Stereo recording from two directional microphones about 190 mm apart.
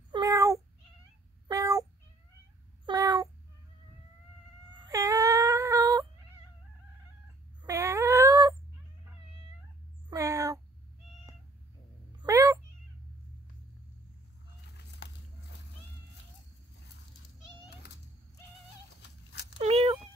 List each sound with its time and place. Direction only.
0.1 s cat: 20° right (ahead or behind)
4.7 s a sound: 20° right (ahead or behind)
7.6 s dog: 15° right (ahead or behind)
10.0 s cat: 15° right (ahead or behind)
12.2 s cat: 15° right (ahead or behind)
15.0 s a sound: 65° left (ahead or behind)
19.6 s cat: 35° right (ahead or behind)